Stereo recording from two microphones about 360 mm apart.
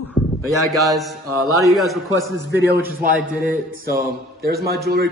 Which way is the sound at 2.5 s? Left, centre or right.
Right.